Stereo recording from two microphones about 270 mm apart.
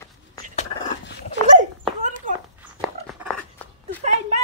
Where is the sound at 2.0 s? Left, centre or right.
Right.